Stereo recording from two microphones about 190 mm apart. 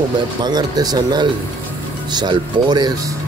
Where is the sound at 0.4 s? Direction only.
20° right (ahead or behind).